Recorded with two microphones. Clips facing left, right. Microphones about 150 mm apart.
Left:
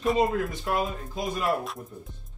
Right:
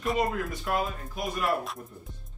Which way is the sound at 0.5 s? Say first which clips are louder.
Left 1 dB; 20° left (ahead or behind).